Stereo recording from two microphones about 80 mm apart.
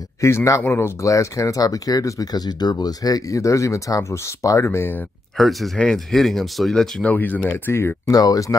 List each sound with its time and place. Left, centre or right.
0.2 s speech: left
5.4 s speech: centre
7.1 s speech: left
8.1 s speech: left